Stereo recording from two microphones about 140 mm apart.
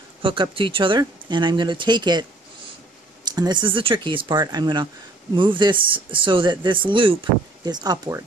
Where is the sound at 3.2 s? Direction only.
30° right (ahead or behind).